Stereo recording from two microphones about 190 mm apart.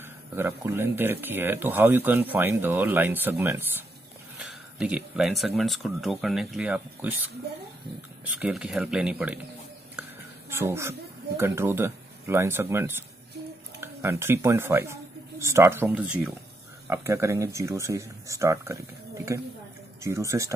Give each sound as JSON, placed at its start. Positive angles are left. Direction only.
{"t": 0.0, "sound": "speech", "side_deg": -10}
{"t": 8.4, "sound": "speech", "side_deg": -5}
{"t": 10.5, "sound": "speech", "side_deg": -15}